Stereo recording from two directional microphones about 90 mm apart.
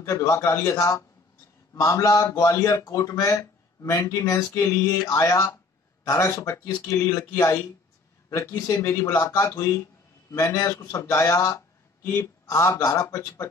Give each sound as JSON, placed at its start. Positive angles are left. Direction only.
{"t": 0.0, "sound": "a man's voice", "side_deg": 35}